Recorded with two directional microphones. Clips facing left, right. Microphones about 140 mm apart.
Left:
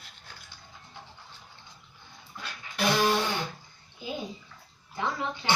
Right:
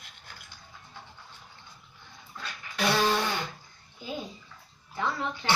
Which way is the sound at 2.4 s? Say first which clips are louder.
Even; 10° left (ahead or behind).